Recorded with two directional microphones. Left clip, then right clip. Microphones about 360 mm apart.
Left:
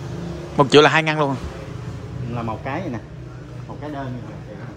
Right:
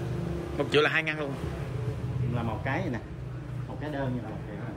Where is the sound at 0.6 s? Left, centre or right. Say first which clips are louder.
Left 12 dB; centre.